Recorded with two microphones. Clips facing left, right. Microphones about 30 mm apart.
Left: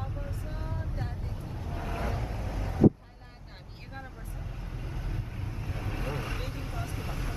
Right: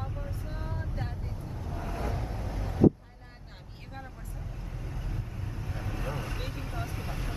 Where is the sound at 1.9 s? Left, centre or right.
Left.